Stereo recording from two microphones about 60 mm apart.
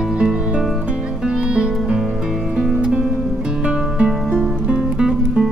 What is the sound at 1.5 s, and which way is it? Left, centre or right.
Music, centre.